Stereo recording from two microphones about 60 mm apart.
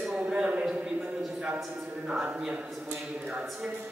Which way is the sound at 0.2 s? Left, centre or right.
Right.